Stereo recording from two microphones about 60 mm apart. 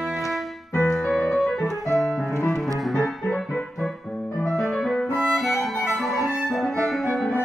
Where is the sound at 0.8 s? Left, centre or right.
Centre.